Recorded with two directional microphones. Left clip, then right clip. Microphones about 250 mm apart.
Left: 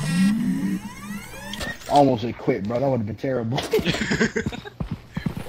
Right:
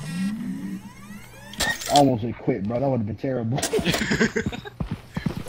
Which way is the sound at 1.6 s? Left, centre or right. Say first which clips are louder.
Right 8 dB; centre.